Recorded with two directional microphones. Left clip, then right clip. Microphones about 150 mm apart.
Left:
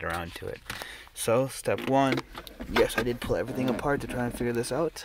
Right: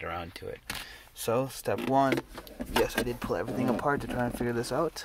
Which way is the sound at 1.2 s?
25° left (ahead or behind).